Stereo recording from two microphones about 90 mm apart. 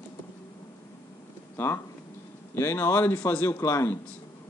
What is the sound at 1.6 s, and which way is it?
A man's voice, 20° left (ahead or behind).